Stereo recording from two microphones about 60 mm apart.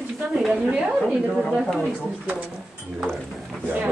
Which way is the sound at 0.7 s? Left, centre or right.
Centre.